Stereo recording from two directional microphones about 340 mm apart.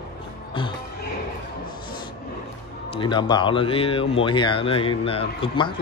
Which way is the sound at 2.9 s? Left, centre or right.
Centre.